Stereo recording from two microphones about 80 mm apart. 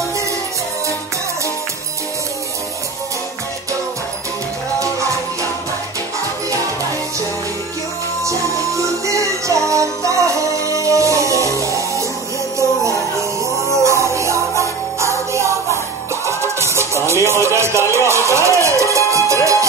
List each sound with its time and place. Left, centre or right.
8.2 s music: right
13.8 s music: right